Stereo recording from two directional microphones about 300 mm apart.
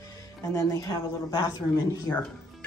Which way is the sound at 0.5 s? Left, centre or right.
Centre.